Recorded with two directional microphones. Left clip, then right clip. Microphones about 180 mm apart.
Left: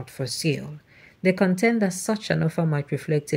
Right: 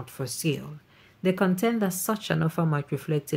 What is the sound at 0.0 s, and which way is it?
A woman's voice, 5° left (ahead or behind).